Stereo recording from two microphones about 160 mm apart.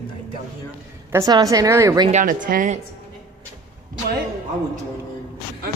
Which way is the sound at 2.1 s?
50° right (ahead or behind).